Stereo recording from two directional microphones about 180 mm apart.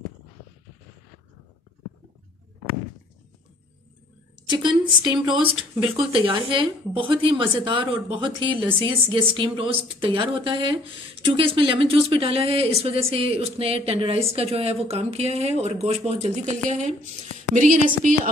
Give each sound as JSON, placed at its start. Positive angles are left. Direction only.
{"t": 4.5, "sound": "a woman's voice", "side_deg": -25}